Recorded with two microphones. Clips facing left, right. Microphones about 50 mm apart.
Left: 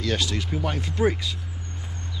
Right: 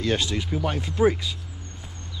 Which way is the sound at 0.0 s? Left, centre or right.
Right.